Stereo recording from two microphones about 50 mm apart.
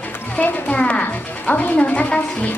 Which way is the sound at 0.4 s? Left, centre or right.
Left.